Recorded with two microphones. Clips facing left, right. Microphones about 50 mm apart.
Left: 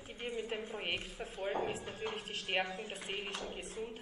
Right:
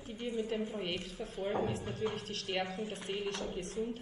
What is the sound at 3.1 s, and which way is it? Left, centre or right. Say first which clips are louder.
Speech: right 3 dB; left.